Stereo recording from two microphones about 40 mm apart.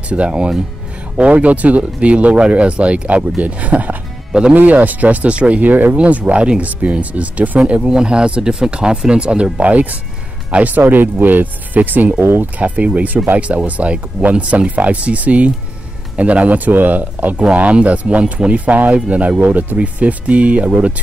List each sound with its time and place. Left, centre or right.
0.1 s speech: right
5.7 s speech: right
5.9 s speech: right
7.8 s speech: right
10.8 s speech: right
12.2 s speech: right
12.5 s speech: right
18.2 s speech: right
19.0 s speech: right
19.4 s speech: right